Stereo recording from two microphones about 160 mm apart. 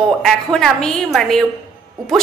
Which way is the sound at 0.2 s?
Centre (ahead or behind).